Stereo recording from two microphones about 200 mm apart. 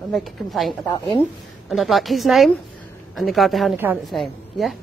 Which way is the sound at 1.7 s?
Centre (ahead or behind).